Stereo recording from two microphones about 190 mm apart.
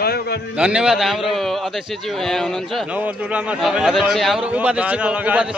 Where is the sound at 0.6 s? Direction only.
5° right (ahead or behind).